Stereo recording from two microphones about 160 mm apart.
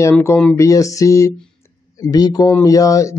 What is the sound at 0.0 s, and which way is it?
Speech, 15° left (ahead or behind).